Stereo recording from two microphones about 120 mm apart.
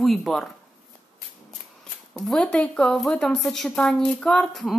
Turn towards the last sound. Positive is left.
turn(degrees=5)  # may be behind; listen again after turning